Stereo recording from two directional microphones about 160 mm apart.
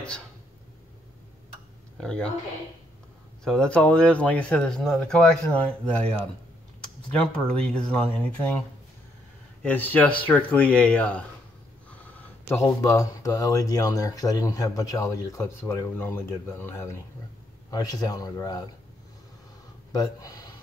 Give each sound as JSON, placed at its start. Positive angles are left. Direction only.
{"t": 2.0, "sound": "speech", "side_deg": 5}
{"t": 3.4, "sound": "speech", "side_deg": 5}
{"t": 9.6, "sound": "speech", "side_deg": 10}
{"t": 19.9, "sound": "speech", "side_deg": 20}